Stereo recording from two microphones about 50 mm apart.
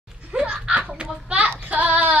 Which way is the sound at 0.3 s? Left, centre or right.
Right.